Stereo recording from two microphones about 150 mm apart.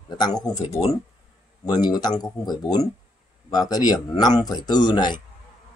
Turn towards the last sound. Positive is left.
turn(degrees=30)  # may be behind; listen again after turning